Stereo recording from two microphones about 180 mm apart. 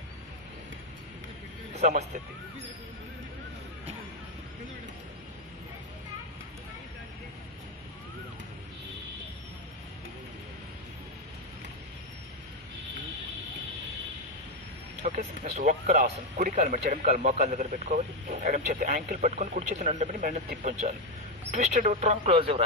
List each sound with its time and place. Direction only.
1.8 s a man's voice: 35° right (ahead or behind)
15.0 s vehicle: 45° right (ahead or behind)
16.3 s speech: 45° right (ahead or behind)